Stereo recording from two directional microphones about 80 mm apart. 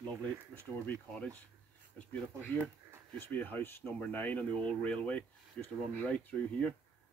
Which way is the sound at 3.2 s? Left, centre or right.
Left.